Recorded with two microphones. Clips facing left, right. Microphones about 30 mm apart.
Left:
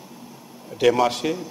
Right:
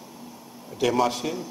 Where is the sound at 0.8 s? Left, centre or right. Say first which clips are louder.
Left 4 dB; centre.